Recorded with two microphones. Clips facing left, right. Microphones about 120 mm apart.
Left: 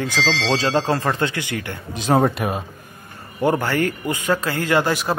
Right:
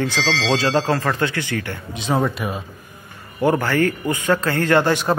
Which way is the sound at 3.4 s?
15° left (ahead or behind).